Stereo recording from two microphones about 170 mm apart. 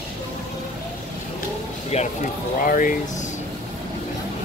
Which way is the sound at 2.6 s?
55° left (ahead or behind).